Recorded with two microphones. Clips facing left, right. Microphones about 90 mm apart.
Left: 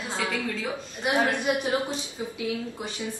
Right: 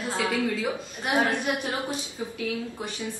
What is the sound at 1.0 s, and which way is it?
Speech, 15° left (ahead or behind).